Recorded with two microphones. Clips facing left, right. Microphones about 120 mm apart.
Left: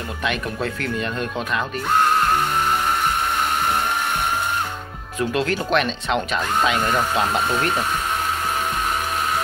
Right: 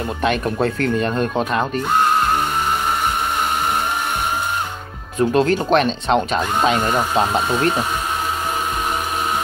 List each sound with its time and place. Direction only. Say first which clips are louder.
0.2 s speech: right 6 dB; 40° right (ahead or behind)
5.2 s speech: right 6 dB; 35° right (ahead or behind)